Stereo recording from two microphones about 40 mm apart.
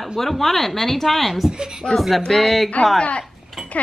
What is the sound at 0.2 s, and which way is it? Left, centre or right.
Speech, centre.